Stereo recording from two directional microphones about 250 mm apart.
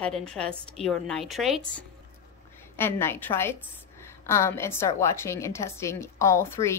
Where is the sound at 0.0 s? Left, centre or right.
Centre.